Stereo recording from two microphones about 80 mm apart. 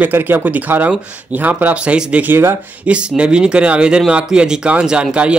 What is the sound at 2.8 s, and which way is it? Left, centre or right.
Speech, centre.